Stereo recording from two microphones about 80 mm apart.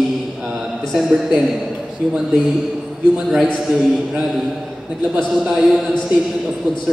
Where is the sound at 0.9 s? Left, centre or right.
Centre.